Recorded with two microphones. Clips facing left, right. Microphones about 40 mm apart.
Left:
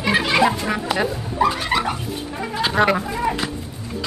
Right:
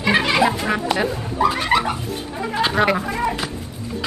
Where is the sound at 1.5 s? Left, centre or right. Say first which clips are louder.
Right 3 dB; centre.